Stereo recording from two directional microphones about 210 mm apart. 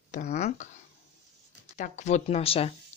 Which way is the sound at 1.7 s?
35° left (ahead or behind).